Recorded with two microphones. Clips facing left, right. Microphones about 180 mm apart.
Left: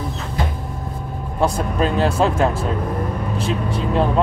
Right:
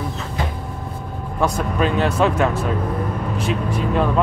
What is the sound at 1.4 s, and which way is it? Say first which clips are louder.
Speech: left 1 dB; 30° left (ahead or behind).